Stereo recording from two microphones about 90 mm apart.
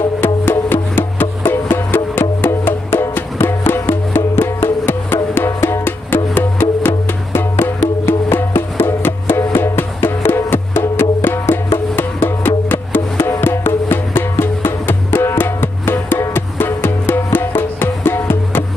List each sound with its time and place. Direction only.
0.2 s music: 25° left (ahead or behind)